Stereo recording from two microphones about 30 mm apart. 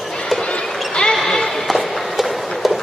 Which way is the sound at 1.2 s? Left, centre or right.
Centre.